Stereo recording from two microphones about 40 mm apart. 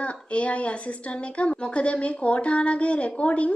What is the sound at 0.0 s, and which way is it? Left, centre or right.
A woman's voice, left.